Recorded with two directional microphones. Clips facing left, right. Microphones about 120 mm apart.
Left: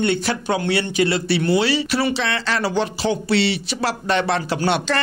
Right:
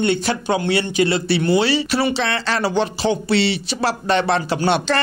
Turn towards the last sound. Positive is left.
turn(degrees=-30)  # may be behind; listen again after turning